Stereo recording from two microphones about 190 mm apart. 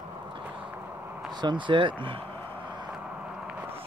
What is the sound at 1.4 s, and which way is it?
Speech, 25° right (ahead or behind).